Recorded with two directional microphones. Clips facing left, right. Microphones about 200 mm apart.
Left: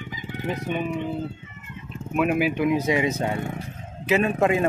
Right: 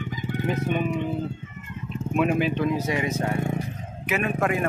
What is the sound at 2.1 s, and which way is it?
Speech, 5° left (ahead or behind).